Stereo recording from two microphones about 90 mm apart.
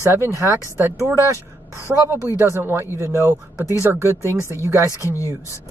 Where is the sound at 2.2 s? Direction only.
30° right (ahead or behind).